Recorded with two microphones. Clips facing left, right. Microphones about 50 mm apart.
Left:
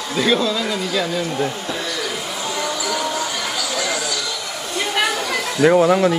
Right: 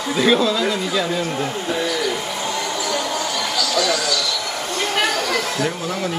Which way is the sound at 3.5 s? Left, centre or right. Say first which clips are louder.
Right 6 dB; left.